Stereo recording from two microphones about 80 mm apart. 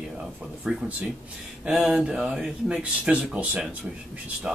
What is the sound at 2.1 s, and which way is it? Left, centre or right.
Speech, centre.